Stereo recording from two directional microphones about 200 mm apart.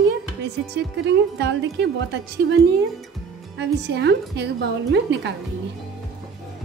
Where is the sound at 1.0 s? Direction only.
60° right (ahead or behind).